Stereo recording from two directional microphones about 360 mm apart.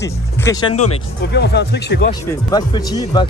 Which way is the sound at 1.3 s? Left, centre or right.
Left.